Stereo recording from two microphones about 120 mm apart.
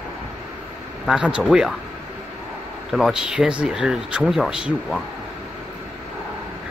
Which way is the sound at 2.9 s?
5° right (ahead or behind).